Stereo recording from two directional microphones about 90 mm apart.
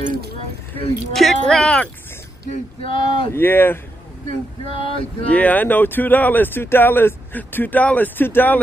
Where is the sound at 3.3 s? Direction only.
25° left (ahead or behind).